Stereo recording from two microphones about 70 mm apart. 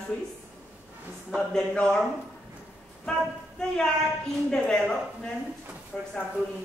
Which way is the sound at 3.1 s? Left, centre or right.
Centre.